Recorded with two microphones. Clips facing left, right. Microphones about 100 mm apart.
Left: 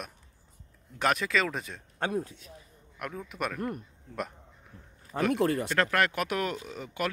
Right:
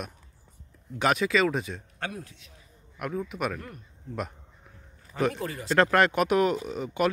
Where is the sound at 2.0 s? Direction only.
30° left (ahead or behind).